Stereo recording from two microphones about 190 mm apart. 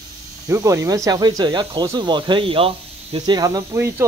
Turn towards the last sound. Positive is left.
turn(degrees=-15)  # may be behind; listen again after turning